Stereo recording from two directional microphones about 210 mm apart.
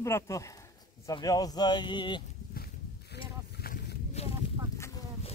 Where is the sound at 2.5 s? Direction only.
50° left (ahead or behind).